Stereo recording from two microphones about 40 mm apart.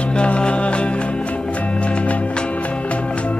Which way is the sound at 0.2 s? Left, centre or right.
Left.